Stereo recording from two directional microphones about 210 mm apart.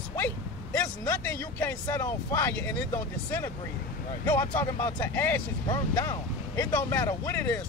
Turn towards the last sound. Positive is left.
turn(degrees=10)  # may be behind; listen again after turning